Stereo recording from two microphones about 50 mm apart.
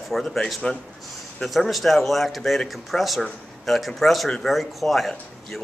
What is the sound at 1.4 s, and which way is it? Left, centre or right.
Speech, centre.